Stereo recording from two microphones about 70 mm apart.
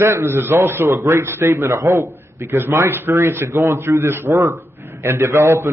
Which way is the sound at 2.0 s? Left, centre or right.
Right.